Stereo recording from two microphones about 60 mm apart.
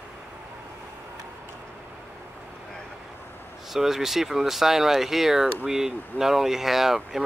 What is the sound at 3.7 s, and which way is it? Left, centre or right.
Speech, centre.